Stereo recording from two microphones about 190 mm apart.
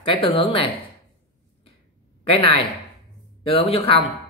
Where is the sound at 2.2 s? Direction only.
30° left (ahead or behind).